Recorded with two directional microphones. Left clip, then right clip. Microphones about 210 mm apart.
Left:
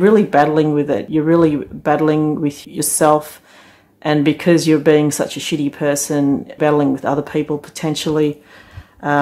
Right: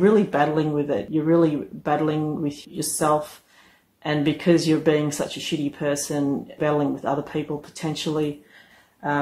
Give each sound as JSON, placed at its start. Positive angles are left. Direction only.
{"t": 0.0, "sound": "speech", "side_deg": 35}